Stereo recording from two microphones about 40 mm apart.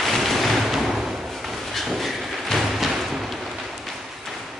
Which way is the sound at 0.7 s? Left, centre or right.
Centre.